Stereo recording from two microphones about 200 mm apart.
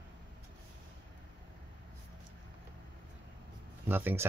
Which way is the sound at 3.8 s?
10° right (ahead or behind).